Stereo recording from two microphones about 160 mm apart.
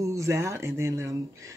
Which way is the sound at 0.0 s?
20° right (ahead or behind).